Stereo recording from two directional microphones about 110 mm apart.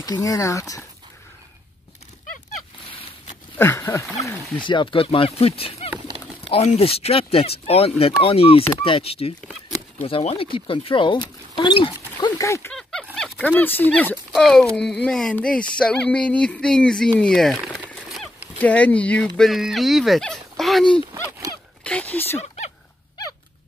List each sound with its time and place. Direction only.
0.0 s speech: 35° left (ahead or behind)
2.9 s a sound: 50° left (ahead or behind)
3.5 s speech: 20° left (ahead or behind)
4.6 s speech: 45° left (ahead or behind)
12.4 s speech: 30° left (ahead or behind)
13.1 s speech: 10° left (ahead or behind)
14.3 s speech: 5° left (ahead or behind)